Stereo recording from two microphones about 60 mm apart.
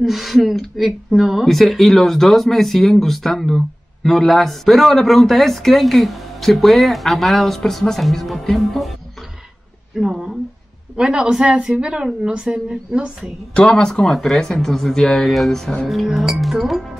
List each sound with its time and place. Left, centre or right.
0.0 s speech: centre
9.9 s a woman's voice: centre
13.6 s speech: centre